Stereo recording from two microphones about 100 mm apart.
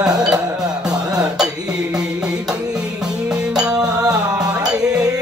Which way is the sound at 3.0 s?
5° right (ahead or behind).